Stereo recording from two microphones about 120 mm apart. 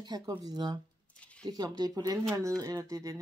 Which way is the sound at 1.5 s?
30° right (ahead or behind).